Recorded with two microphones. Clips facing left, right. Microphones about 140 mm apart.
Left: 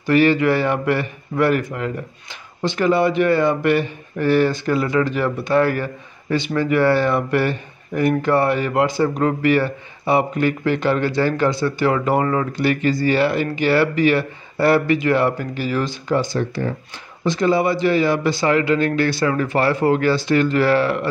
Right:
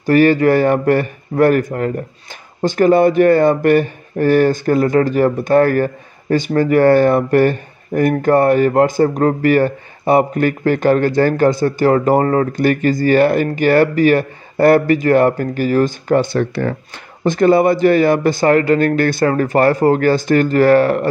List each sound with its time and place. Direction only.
0.0 s speech: 45° right (ahead or behind)